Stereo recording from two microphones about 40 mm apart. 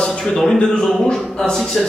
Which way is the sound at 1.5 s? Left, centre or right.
Centre.